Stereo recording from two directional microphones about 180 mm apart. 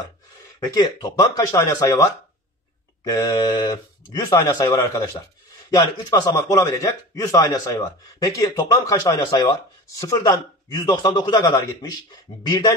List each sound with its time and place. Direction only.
0.7 s a man's voice: 25° left (ahead or behind)